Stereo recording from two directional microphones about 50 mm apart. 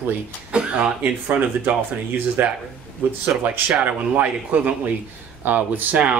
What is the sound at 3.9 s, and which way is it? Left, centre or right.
Speech, right.